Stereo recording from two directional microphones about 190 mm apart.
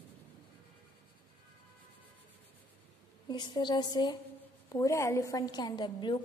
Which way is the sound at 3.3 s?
25° left (ahead or behind).